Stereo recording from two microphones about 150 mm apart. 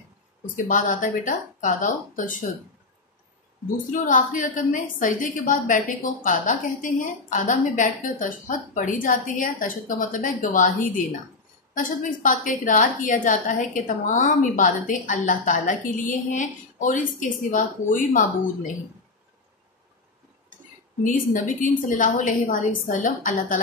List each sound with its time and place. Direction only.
0.6 s a woman's voice: 60° left (ahead or behind)
3.9 s a woman's voice: 60° left (ahead or behind)
21.0 s a woman's voice: 60° left (ahead or behind)